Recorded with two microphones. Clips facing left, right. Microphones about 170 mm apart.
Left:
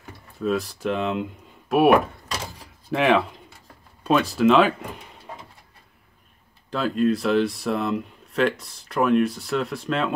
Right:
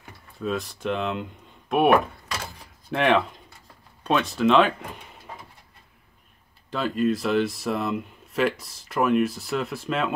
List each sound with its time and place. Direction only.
0.4 s speech: centre (ahead or behind)
2.9 s speech: centre (ahead or behind)
6.7 s speech: centre (ahead or behind)